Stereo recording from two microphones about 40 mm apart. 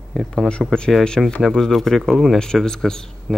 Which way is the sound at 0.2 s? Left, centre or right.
Centre.